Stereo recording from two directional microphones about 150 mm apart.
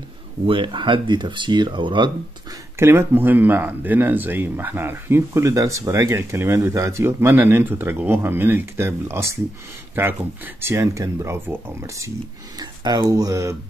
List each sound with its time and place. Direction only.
0.5 s speech: 35° right (ahead or behind)
2.8 s speech: 15° right (ahead or behind)